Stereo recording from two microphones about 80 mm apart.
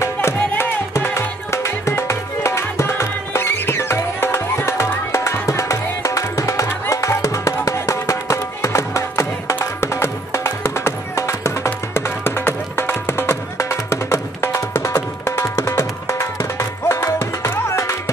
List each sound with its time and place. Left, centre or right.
0.0 s music: left